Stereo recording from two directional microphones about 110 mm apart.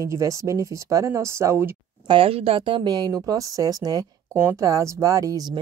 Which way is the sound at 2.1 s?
60° right (ahead or behind).